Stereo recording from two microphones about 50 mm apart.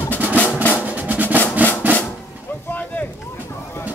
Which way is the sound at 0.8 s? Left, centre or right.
Right.